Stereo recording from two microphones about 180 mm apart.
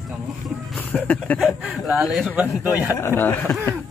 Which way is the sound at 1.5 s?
5° right (ahead or behind).